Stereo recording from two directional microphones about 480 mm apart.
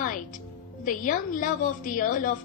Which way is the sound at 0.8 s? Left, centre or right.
Centre.